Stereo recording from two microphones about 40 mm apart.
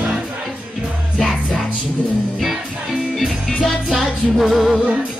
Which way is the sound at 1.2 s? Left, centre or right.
Centre.